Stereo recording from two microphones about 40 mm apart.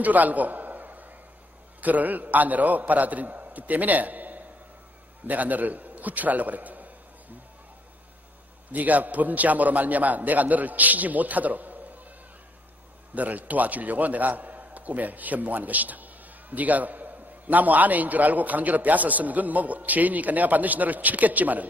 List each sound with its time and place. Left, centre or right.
0.0 s a sound: right
1.8 s a man's voice: right
8.7 s a man's voice: right
13.1 s a man's voice: right